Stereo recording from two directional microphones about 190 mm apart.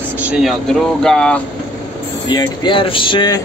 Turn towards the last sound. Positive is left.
turn(degrees=25)  # may be behind; listen again after turning